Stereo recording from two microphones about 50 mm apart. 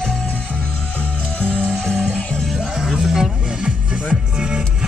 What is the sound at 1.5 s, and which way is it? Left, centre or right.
Music, centre.